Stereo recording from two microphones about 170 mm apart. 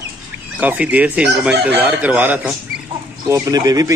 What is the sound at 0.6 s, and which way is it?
Speech, 10° right (ahead or behind).